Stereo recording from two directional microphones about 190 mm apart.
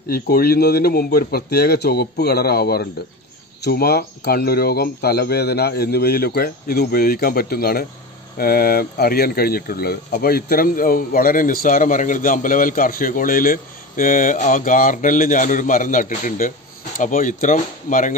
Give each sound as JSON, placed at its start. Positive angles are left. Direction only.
{"t": 0.1, "sound": "speech", "side_deg": 55}